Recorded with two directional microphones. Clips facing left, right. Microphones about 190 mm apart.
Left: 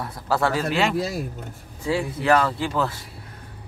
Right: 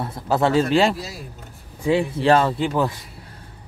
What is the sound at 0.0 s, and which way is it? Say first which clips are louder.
A man's voice: right 3 dB; 25° right (ahead or behind).